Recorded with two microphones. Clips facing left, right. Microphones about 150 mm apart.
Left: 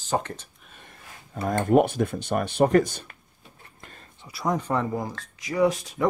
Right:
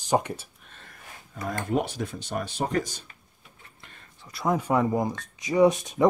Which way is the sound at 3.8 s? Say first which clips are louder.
Left 5 dB; 40° left (ahead or behind).